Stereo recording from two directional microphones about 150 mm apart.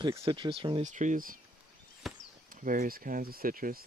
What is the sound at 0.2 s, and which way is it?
Speech, 35° right (ahead or behind).